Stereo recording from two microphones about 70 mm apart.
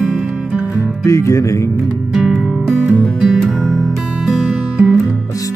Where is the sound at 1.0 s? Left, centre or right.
Left.